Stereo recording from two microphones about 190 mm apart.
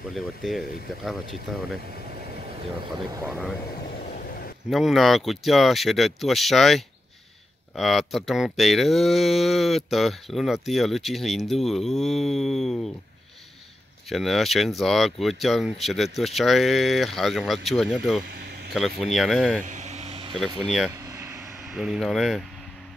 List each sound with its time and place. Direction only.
0.1 s speech: centre (ahead or behind)
3.3 s speech: centre (ahead or behind)
4.0 s vehicle: 50° left (ahead or behind)
4.6 s speech: centre (ahead or behind)
14.0 s speech: centre (ahead or behind)
19.6 s vehicle: 40° right (ahead or behind)
20.3 s speech: centre (ahead or behind)
21.1 s vehicle: 15° right (ahead or behind)
21.6 s speech: 5° right (ahead or behind)